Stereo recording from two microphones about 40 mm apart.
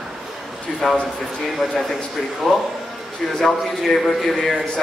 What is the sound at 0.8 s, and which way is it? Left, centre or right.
Speech, centre.